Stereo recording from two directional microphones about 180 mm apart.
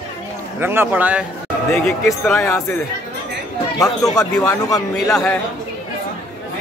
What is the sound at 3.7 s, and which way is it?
Speech, 20° left (ahead or behind).